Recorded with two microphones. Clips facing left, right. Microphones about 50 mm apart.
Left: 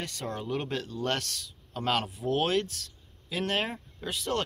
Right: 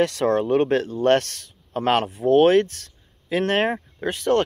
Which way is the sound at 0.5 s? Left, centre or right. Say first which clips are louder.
Right 13 dB; right.